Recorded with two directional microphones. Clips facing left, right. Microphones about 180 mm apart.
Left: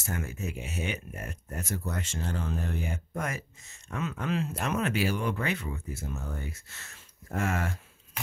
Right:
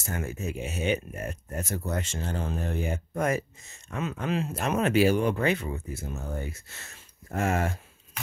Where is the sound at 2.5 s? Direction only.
25° right (ahead or behind).